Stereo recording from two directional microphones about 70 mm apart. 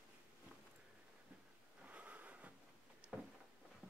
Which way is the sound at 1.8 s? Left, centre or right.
Right.